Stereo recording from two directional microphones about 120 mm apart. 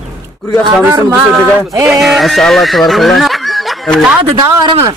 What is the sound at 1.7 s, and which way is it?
Speech, 25° right (ahead or behind).